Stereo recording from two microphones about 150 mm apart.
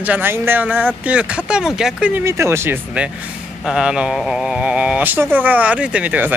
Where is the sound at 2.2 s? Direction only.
20° right (ahead or behind).